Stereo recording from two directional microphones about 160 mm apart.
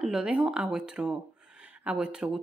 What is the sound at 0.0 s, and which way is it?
Speech, 5° right (ahead or behind).